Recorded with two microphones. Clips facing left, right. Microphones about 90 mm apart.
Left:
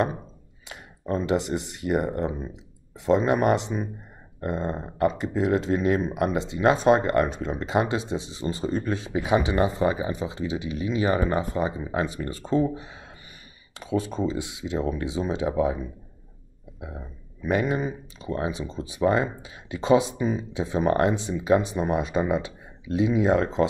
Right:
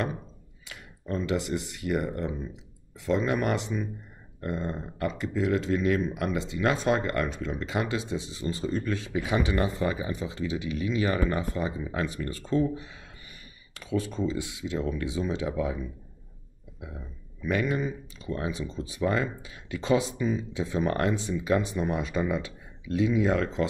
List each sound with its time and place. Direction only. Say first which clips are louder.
0.7 s speech: left 5 dB; 30° left (ahead or behind)